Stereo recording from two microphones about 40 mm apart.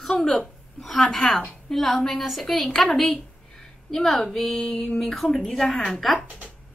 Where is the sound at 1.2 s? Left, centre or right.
Left.